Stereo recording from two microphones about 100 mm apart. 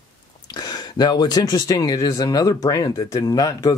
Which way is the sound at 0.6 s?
45° left (ahead or behind).